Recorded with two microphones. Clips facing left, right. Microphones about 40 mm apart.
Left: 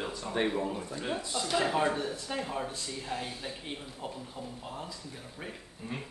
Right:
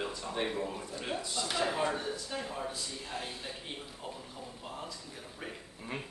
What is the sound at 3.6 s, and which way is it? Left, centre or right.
Speech, centre.